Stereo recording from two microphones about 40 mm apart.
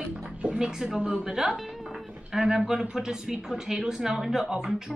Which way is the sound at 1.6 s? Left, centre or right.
Centre.